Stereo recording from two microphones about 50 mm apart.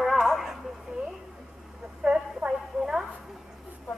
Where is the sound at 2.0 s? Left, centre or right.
Right.